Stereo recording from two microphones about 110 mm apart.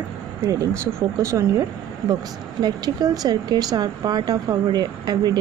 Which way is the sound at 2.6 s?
35° right (ahead or behind).